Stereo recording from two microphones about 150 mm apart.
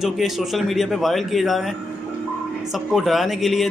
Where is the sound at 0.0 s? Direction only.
Centre (ahead or behind).